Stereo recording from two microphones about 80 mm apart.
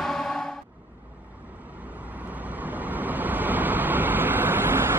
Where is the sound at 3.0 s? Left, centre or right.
Right.